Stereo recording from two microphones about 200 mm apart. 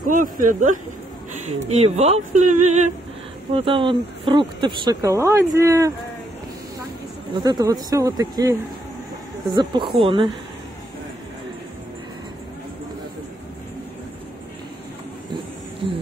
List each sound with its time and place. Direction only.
0.0 s speech: 40° right (ahead or behind); by 5.9 s 15° right (ahead or behind)
7.3 s speech: 20° right (ahead or behind)